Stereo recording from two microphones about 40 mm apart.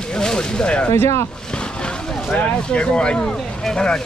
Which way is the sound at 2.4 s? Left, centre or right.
Left.